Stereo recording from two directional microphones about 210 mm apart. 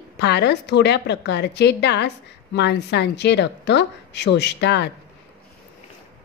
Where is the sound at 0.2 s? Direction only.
55° left (ahead or behind).